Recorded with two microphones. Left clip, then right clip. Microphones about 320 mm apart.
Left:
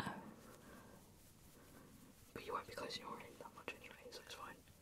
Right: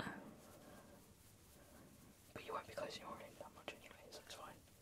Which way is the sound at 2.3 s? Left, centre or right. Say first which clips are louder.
Left 1 dB; centre.